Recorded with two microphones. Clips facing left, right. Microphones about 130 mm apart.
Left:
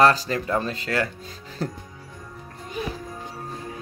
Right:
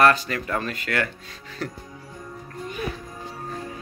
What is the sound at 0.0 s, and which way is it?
Speech, 30° left (ahead or behind).